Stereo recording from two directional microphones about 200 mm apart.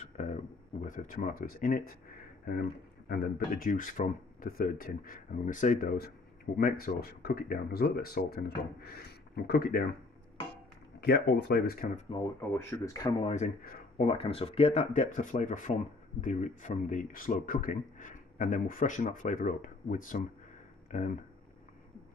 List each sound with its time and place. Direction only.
0.0 s speech: 40° left (ahead or behind)
3.1 s speech: 50° left (ahead or behind)
11.0 s speech: 55° left (ahead or behind)
12.4 s speech: 15° left (ahead or behind)
13.3 s speech: 35° left (ahead or behind)